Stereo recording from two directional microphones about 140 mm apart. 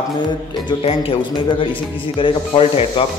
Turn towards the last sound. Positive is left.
turn(degrees=45)  # may be behind; listen again after turning